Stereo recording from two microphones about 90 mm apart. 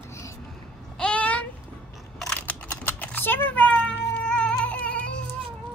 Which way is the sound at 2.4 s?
20° left (ahead or behind).